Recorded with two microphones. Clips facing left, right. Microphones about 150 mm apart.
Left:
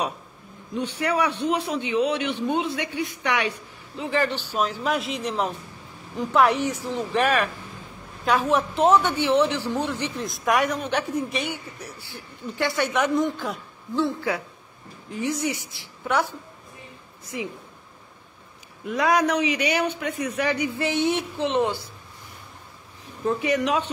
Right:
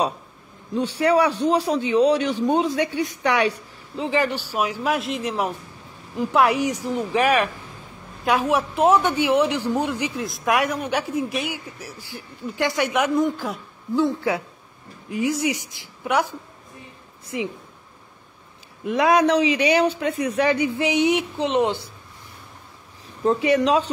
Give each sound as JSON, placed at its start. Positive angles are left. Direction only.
{"t": 0.7, "sound": "speech", "side_deg": -35}
{"t": 4.1, "sound": "a man's voice", "side_deg": -10}
{"t": 15.0, "sound": "a man's voice", "side_deg": -10}
{"t": 18.9, "sound": "speech", "side_deg": -25}
{"t": 20.8, "sound": "a man's voice", "side_deg": -15}
{"t": 23.2, "sound": "speech", "side_deg": -30}